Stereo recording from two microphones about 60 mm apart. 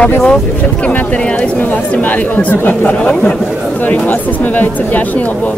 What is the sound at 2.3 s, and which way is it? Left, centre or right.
Speech, left.